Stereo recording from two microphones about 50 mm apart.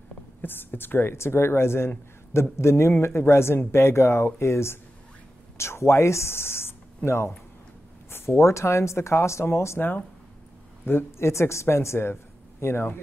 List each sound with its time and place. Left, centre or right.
0.4 s a woman's voice: left
7.1 s speech: left
8.4 s speech: left
10.9 s speech: left